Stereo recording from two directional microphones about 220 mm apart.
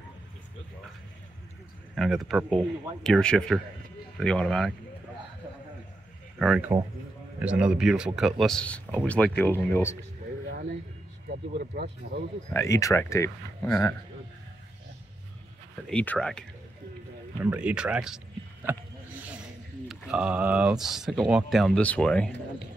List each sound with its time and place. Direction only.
2.0 s speech: centre (ahead or behind)
6.3 s speech: centre (ahead or behind)
11.7 s speech: 45° right (ahead or behind)
12.5 s speech: 15° left (ahead or behind)
15.9 s speech: 5° left (ahead or behind)
19.9 s speech: 5° right (ahead or behind)